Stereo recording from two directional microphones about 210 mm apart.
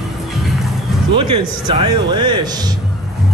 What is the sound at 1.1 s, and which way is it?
Speech, 25° right (ahead or behind).